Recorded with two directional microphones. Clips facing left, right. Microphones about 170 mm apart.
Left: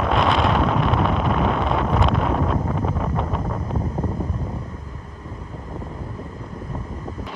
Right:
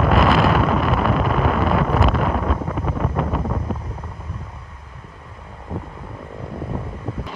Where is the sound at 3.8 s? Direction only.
40° left (ahead or behind).